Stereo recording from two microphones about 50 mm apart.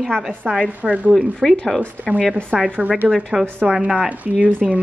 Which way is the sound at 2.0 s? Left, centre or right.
Right.